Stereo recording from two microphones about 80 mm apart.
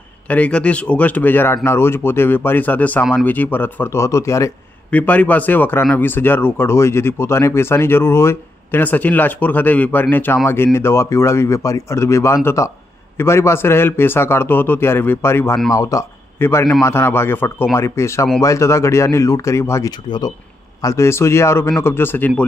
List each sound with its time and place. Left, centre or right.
0.3 s speech: centre; by 4.5 s left
4.9 s speech: centre
8.8 s speech: left
15.7 s speech: left
16.3 s a man's voice: left
20.1 s speech: left
20.8 s speech: left